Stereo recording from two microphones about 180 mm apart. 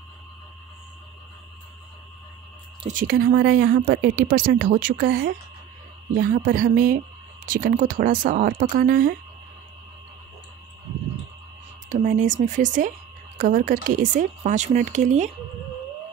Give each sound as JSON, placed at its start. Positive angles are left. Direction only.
{"t": 2.9, "sound": "speech", "side_deg": -55}
{"t": 11.9, "sound": "speech", "side_deg": -45}